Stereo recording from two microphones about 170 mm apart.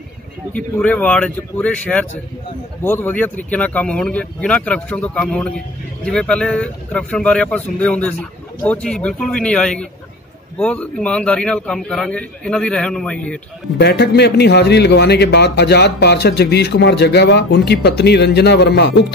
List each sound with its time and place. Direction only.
0.6 s speech: 5° left (ahead or behind)
13.7 s a man's voice: 80° left